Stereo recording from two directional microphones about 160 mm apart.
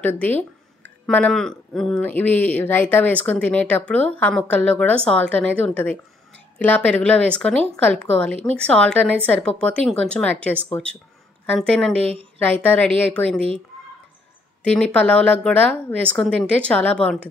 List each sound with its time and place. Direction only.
0.0 s speech: 10° left (ahead or behind)
12.0 s a woman's voice: 40° right (ahead or behind)
12.6 s speech: 10° left (ahead or behind)
14.6 s speech: 5° left (ahead or behind)